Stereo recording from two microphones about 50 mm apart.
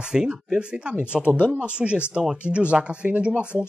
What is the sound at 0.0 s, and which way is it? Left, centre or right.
Speech, centre.